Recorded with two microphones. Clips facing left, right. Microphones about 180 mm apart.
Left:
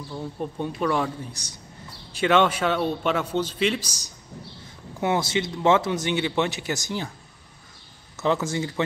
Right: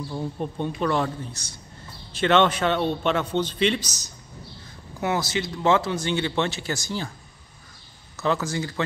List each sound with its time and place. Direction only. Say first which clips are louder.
0.4 s a man's voice: left 1 dB; 5° left (ahead or behind)
5.0 s speech: left 2 dB; 25° left (ahead or behind)
8.2 s speech: left 1 dB; 25° left (ahead or behind)